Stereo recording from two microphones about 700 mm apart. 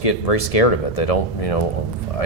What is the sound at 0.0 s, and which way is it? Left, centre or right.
Speech, left.